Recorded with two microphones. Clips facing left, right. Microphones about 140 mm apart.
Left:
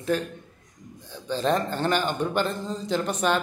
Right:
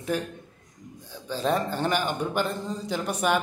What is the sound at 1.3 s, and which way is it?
Speech, 10° right (ahead or behind).